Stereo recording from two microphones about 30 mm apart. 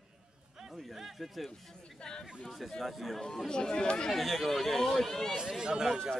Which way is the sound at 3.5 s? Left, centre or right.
Left.